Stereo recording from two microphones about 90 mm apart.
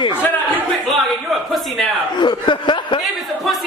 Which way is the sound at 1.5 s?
Centre (ahead or behind).